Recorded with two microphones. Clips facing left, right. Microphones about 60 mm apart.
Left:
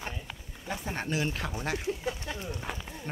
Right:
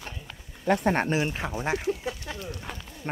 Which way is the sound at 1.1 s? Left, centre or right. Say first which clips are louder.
Right 4 dB; right.